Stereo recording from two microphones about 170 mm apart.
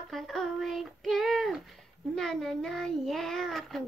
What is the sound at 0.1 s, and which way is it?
Child singing, centre (ahead or behind).